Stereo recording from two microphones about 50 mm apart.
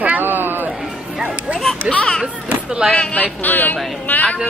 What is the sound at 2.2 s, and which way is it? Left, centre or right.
Speech, centre.